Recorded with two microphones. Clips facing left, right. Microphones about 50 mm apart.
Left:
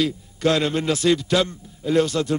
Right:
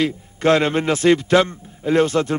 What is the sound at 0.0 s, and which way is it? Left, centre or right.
A man's voice, right.